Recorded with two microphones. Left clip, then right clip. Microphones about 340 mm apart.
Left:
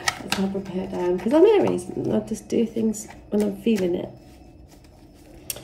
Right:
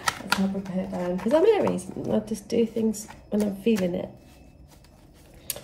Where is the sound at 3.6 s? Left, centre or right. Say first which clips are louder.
Left 2 dB; centre.